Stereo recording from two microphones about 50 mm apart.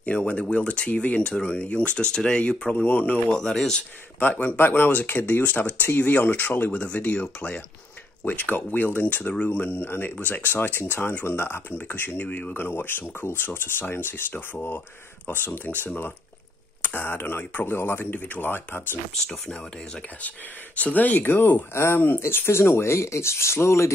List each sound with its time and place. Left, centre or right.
0.3 s speech: left
2.7 s speech: left
3.3 s speech: centre
4.2 s speech: left
8.2 s speech: left
11.9 s speech: left
12.5 s speech: left
16.8 s speech: left
18.2 s speech: left
19.2 s speech: left
21.7 s speech: left